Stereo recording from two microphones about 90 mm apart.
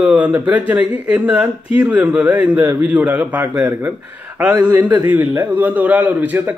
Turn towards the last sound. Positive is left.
turn(degrees=-20)  # may be behind; listen again after turning